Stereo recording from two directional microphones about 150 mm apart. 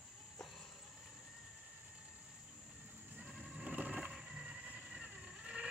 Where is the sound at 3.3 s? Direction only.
5° right (ahead or behind).